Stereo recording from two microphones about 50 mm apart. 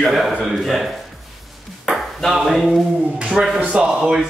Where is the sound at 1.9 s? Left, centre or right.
Centre.